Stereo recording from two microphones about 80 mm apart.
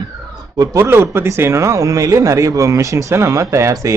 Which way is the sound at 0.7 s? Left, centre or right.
Right.